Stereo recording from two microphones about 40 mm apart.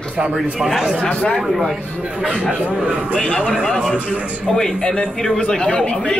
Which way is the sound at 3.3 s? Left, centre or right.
Left.